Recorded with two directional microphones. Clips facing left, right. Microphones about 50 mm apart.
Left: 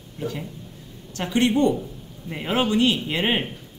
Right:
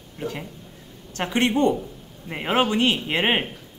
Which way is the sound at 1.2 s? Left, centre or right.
Right.